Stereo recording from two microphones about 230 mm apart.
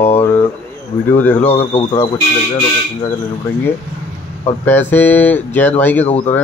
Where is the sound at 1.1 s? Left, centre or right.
Centre.